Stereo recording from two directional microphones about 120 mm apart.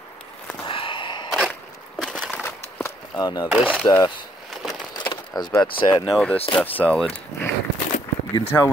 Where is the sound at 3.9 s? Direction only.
30° left (ahead or behind).